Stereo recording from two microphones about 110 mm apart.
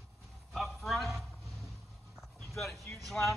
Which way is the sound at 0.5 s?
Centre (ahead or behind).